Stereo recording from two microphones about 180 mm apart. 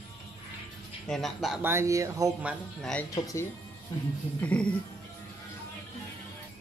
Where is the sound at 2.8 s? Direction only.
5° left (ahead or behind).